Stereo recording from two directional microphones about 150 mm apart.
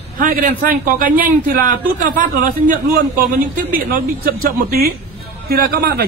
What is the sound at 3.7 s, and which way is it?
A man's voice, 80° right.